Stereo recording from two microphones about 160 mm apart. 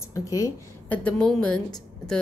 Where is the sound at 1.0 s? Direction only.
5° left (ahead or behind).